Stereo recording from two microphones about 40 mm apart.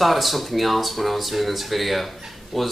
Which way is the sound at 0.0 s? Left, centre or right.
Centre.